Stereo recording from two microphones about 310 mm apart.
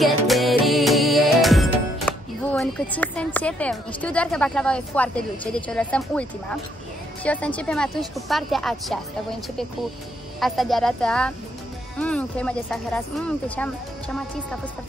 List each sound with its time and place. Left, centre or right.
0.0 s music: centre
7.2 s speech: centre
10.4 s speech: centre